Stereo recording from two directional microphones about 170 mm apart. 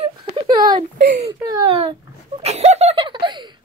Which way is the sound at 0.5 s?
25° right (ahead or behind).